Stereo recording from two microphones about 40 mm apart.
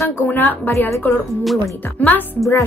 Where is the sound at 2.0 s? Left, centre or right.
Left.